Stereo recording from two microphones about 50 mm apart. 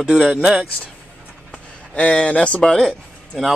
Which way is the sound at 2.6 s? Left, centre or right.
Centre.